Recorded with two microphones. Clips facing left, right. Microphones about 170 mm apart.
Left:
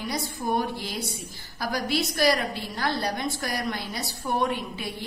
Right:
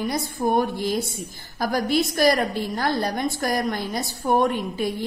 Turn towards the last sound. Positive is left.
turn(degrees=-45)  # may be behind; listen again after turning